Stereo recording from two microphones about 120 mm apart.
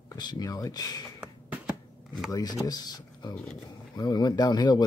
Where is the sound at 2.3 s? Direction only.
30° left (ahead or behind).